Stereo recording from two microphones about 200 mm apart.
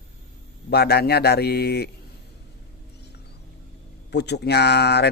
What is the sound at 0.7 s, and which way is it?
A man's voice, 55° left (ahead or behind).